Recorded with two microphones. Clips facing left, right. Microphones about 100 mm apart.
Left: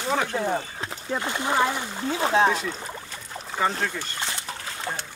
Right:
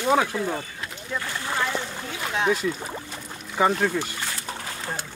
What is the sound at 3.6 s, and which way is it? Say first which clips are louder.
Speech: right 4 dB; 10° right (ahead or behind).